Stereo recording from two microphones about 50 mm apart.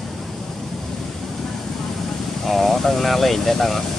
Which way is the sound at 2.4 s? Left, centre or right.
Centre.